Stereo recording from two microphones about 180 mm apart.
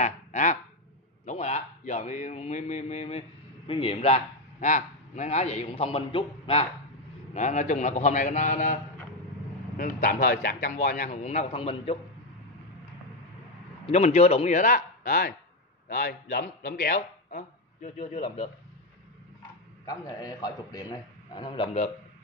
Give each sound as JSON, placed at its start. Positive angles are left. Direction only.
{"t": 0.0, "sound": "a sound", "side_deg": 40}
{"t": 1.2, "sound": "a man's voice", "side_deg": 40}
{"t": 7.3, "sound": "a man's voice", "side_deg": 40}
{"t": 9.8, "sound": "a man's voice", "side_deg": 50}
{"t": 10.2, "sound": "a man's voice", "side_deg": 55}
{"t": 13.8, "sound": "a man's voice", "side_deg": 40}
{"t": 16.9, "sound": "speech", "side_deg": 40}
{"t": 19.9, "sound": "a man's voice", "side_deg": 20}